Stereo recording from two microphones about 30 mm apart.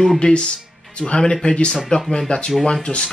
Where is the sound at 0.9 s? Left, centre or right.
Left.